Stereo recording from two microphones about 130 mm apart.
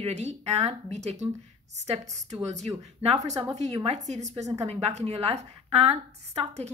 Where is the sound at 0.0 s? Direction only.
60° right (ahead or behind).